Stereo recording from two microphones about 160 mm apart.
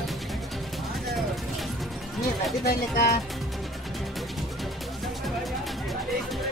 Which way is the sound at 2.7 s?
75° left (ahead or behind).